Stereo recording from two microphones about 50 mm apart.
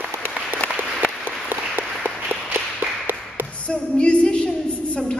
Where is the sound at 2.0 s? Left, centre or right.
Right.